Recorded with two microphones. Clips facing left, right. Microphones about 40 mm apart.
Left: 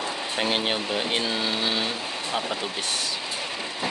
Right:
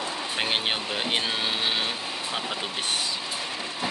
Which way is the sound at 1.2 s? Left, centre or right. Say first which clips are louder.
Left 1 dB; right.